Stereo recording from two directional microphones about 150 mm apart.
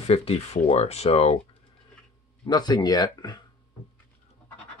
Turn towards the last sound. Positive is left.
turn(degrees=30)  # may be behind; listen again after turning